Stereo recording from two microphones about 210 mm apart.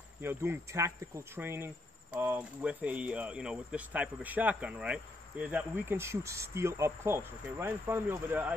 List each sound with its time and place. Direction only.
0.2 s speech: 10° right (ahead or behind)